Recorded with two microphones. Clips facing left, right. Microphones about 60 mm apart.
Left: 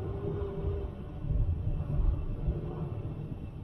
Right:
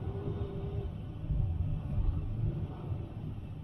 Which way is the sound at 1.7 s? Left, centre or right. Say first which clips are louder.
Left 2 dB; left.